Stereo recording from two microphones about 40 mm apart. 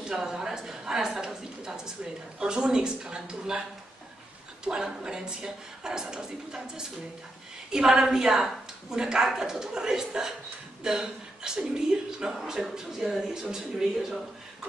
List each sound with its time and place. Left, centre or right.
0.0 s a woman's voice: centre
4.6 s a woman's voice: centre